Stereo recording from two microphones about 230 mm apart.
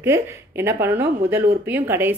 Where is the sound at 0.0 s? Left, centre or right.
Centre.